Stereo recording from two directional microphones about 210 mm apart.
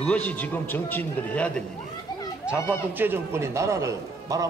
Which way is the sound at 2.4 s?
5° right (ahead or behind).